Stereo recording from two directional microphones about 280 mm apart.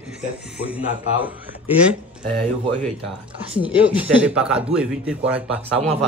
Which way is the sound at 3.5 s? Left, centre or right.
Centre.